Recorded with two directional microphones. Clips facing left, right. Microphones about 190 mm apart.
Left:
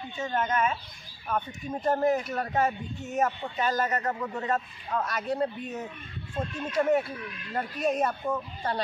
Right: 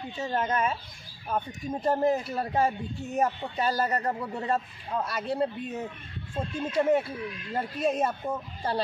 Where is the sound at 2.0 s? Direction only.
30° right (ahead or behind).